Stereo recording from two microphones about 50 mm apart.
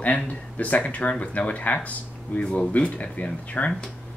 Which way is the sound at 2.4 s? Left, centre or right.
Centre.